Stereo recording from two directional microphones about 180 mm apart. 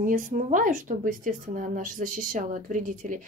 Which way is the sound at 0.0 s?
45° right (ahead or behind).